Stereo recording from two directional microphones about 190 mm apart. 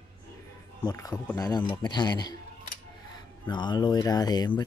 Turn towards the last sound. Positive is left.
turn(degrees=20)  # may be behind; listen again after turning